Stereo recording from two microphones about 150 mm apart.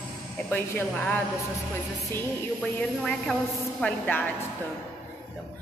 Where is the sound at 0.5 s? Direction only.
10° left (ahead or behind).